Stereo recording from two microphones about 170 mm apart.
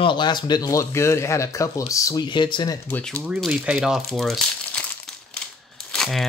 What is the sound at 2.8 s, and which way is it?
Speech, 10° left (ahead or behind).